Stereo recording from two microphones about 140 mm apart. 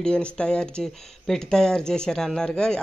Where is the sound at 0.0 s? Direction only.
5° left (ahead or behind).